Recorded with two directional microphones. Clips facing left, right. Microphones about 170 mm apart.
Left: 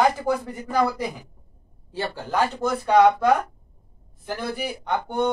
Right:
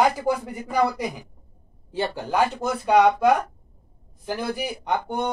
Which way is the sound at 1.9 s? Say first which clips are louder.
Right 2 dB; 15° right (ahead or behind).